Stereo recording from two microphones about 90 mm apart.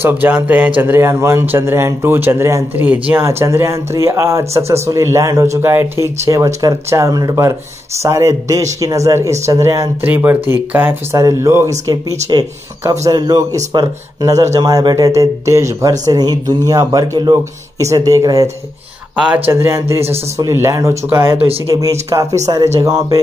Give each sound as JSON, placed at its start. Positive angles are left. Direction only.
{"t": 0.0, "sound": "speech", "side_deg": -20}
{"t": 3.3, "sound": "speech", "side_deg": -30}
{"t": 10.0, "sound": "speech", "side_deg": -20}
{"t": 11.1, "sound": "speech", "side_deg": -35}
{"t": 19.1, "sound": "speech", "side_deg": -10}
{"t": 19.4, "sound": "speech", "side_deg": -30}
{"t": 21.7, "sound": "speech", "side_deg": -40}